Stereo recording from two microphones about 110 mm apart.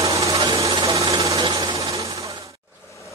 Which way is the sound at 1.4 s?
40° right (ahead or behind).